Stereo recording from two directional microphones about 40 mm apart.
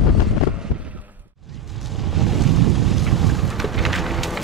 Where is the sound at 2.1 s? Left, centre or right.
Centre.